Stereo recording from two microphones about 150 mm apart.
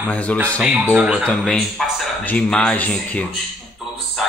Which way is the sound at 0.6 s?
10° right (ahead or behind).